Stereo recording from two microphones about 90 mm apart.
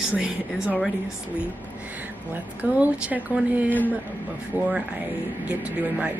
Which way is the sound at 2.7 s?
15° right (ahead or behind).